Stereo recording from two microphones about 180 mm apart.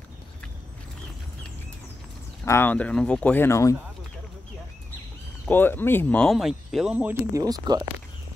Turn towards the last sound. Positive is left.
turn(degrees=-20)  # may be behind; listen again after turning